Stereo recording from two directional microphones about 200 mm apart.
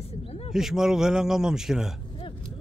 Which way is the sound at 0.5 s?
Centre (ahead or behind).